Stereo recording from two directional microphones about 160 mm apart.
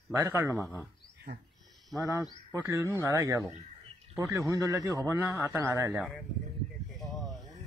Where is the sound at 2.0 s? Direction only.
20° right (ahead or behind).